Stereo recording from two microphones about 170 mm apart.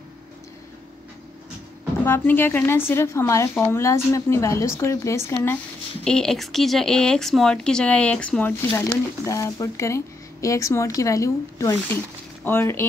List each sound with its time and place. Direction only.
2.0 s speech: 10° left (ahead or behind)
6.0 s speech: 5° left (ahead or behind)